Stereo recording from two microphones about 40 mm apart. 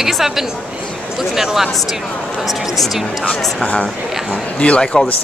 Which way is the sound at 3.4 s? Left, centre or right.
Centre.